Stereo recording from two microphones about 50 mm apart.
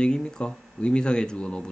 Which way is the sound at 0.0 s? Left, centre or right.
Centre.